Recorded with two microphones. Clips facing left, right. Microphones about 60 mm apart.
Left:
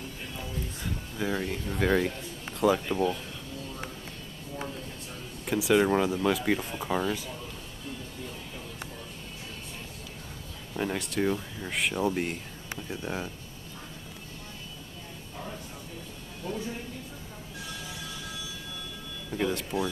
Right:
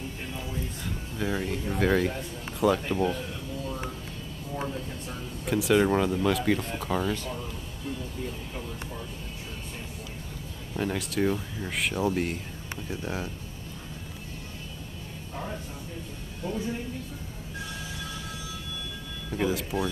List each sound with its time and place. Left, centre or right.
1.1 s speech: centre
5.4 s speech: centre
10.7 s speech: centre
16.4 s speech: right
19.3 s speech: centre